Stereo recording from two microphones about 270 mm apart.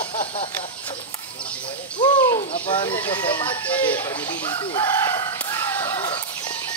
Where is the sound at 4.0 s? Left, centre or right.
Centre.